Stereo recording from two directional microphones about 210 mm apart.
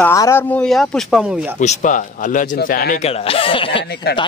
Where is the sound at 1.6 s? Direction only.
35° left (ahead or behind).